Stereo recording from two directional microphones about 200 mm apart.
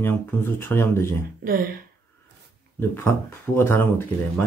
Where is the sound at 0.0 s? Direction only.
10° left (ahead or behind).